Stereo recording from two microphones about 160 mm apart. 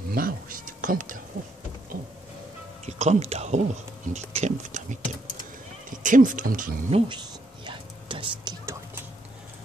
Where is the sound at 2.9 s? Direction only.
45° right (ahead or behind); by 6.8 s 60° right (ahead or behind).